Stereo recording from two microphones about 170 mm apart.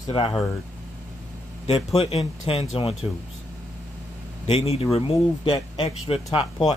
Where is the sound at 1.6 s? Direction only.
35° left (ahead or behind).